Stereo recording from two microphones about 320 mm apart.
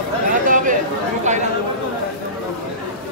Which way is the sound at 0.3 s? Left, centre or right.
Right.